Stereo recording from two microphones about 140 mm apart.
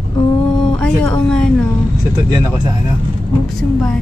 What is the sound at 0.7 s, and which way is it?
Speech, 10° left (ahead or behind).